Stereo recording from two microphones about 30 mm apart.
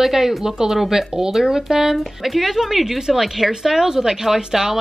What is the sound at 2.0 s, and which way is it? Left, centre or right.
A woman's voice, centre.